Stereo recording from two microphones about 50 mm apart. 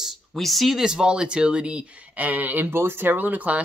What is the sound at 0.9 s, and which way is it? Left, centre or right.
Speech, centre.